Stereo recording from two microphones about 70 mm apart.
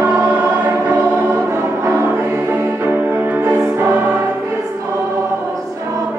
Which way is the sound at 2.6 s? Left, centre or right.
Right.